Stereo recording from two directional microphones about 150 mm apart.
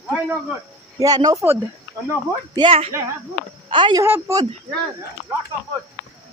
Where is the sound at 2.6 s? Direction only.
40° right (ahead or behind).